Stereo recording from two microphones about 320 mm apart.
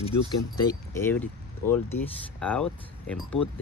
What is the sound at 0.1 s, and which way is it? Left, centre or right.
Speech, left.